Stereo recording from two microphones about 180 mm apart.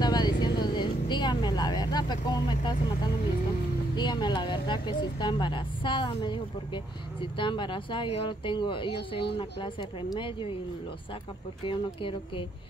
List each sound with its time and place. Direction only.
0.0 s vehicle: 25° left (ahead or behind)
3.9 s speech: 25° left (ahead or behind)
11.6 s speech: 30° left (ahead or behind)